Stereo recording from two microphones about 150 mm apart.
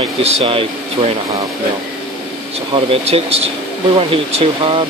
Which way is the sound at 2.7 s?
40° right (ahead or behind).